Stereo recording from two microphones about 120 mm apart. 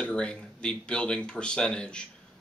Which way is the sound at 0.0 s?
10° left (ahead or behind).